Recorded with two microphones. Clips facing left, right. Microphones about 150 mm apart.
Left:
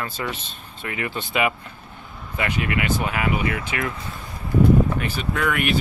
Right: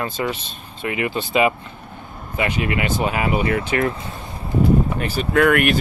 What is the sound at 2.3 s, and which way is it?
Speech, 20° right (ahead or behind).